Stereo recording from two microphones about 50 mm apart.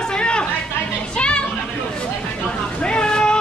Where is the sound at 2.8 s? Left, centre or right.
Centre.